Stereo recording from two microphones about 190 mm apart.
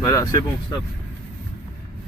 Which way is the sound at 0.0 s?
15° left (ahead or behind).